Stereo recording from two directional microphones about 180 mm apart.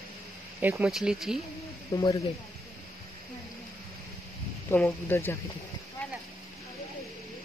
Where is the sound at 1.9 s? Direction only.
20° left (ahead or behind).